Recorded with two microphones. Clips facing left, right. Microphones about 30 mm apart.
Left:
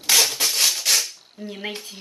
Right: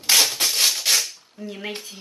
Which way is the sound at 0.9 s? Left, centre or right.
Centre.